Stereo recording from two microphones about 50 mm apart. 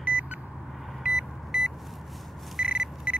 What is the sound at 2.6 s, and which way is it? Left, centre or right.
Beep, centre.